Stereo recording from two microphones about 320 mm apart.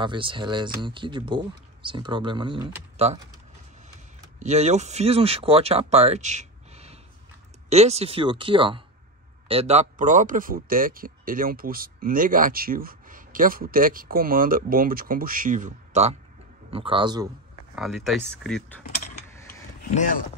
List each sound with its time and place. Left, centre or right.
0.0 s speech: centre
4.4 s speech: right
17.7 s speech: centre
19.3 s mechanisms: centre
19.8 s a sound: left